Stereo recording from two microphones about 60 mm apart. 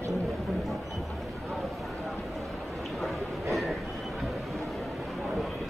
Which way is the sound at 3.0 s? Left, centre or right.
Centre.